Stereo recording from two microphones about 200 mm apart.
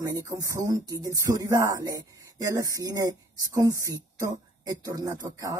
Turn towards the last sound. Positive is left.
turn(degrees=-15)  # may be behind; listen again after turning